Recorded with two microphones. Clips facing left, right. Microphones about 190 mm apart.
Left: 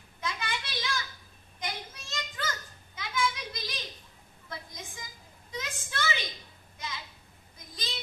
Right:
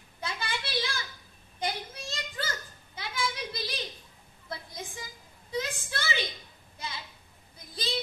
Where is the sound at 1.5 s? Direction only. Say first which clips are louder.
Right 5 dB; 35° right (ahead or behind).